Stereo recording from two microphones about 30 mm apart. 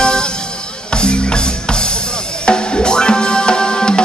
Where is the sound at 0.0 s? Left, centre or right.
Left.